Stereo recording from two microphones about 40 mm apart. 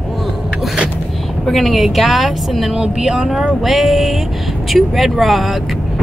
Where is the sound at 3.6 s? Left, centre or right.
Centre.